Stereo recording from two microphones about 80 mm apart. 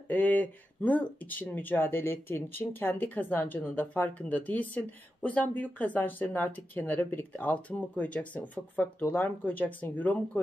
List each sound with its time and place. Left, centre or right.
0.1 s speech: left